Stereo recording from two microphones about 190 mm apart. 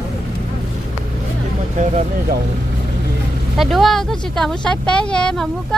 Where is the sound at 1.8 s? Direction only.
40° right (ahead or behind).